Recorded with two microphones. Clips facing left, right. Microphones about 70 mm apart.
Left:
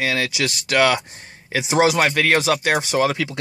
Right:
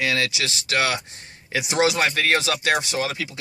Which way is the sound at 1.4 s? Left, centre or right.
Left.